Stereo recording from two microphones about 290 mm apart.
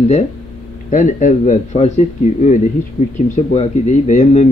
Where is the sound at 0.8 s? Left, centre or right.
Left.